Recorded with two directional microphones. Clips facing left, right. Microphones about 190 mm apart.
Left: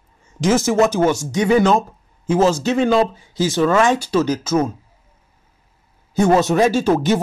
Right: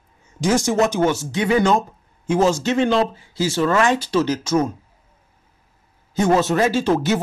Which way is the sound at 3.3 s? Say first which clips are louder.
Left 3 dB; 20° left (ahead or behind).